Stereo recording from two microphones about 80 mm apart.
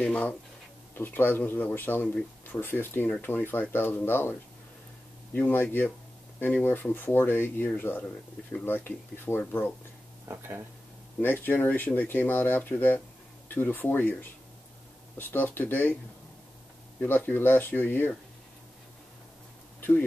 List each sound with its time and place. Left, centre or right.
0.0 s speech: centre
10.3 s speech: right
11.1 s speech: left
15.1 s speech: left
17.1 s speech: left